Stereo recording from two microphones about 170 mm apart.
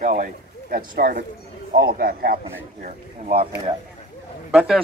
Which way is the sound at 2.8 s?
45° right (ahead or behind).